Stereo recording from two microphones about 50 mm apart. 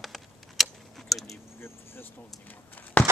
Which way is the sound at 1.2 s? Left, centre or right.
Left.